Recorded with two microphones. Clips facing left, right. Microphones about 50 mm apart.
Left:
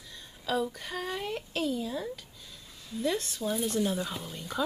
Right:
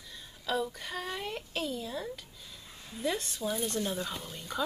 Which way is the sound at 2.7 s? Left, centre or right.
Right.